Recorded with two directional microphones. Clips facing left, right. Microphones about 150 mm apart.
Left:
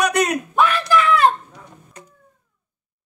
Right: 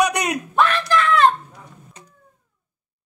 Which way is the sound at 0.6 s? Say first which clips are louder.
Left 1 dB; 5° left (ahead or behind).